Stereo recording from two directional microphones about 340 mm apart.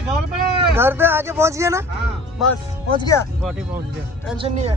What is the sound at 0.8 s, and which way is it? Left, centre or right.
Speech, centre.